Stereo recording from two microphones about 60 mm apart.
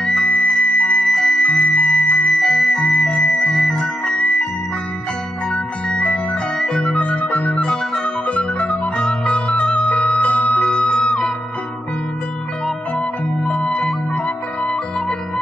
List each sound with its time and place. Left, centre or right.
0.0 s music: centre
1.4 s music: centre
2.3 s music: centre
4.1 s music: left
5.5 s music: centre
6.6 s music: centre
7.0 s music: left
7.6 s music: centre
8.3 s music: left
13.8 s music: centre